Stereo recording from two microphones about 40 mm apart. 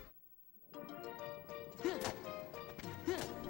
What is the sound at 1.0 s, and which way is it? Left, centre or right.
Music, centre.